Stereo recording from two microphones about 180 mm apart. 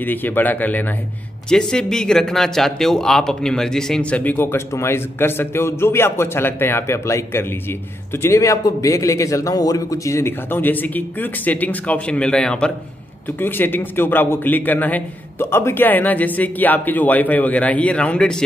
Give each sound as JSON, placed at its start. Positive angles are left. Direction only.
{"t": 0.0, "sound": "speech", "side_deg": 10}